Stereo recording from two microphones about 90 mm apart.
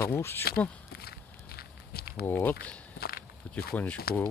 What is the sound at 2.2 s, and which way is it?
Speech, 20° left (ahead or behind).